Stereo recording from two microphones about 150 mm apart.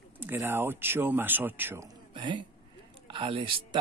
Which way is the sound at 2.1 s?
30° right (ahead or behind).